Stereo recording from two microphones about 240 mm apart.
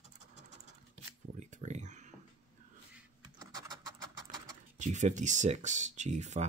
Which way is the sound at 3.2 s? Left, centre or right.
Centre.